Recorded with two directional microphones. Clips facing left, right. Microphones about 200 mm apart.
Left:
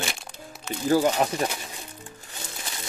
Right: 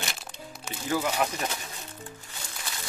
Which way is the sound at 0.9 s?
35° left (ahead or behind).